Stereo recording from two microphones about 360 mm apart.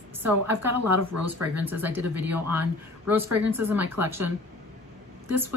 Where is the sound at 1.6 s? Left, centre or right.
Centre.